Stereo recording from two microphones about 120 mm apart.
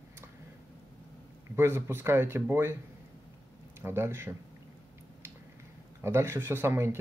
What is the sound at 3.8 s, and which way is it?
Speech, 20° right (ahead or behind).